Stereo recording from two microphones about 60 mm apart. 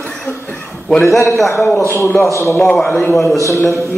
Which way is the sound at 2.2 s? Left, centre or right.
Left.